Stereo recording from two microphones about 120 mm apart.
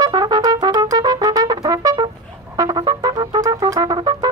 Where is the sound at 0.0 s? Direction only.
35° right (ahead or behind).